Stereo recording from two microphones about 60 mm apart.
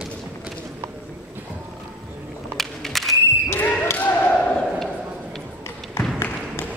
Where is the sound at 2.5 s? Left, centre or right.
Centre.